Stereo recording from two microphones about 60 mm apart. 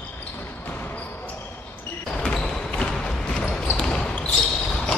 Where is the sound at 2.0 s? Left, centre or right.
Centre.